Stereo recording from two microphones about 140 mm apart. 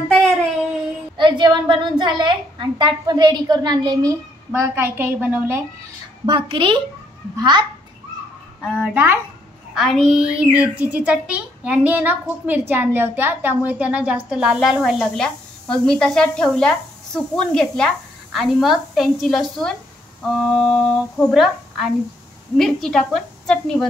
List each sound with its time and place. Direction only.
1.1 s a woman's voice: 35° right (ahead or behind)
4.5 s a woman's voice: 15° right (ahead or behind)
6.2 s a woman's voice: 35° right (ahead or behind)
8.7 s a woman's voice: 10° right (ahead or behind)
9.8 s a child's voice: centre (ahead or behind)